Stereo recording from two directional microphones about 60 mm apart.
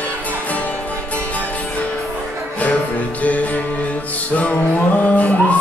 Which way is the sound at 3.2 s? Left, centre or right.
Left.